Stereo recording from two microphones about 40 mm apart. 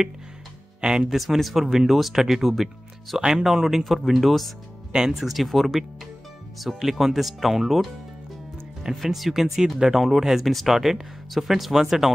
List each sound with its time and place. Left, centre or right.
0.7 s speech: right
1.1 s speech: centre
3.2 s speech: centre
3.4 s speech: centre
4.9 s speech: centre
5.2 s speech: centre
9.0 s speech: centre